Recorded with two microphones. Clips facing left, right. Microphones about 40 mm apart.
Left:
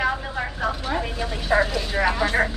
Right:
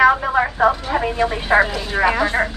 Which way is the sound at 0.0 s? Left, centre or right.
Right.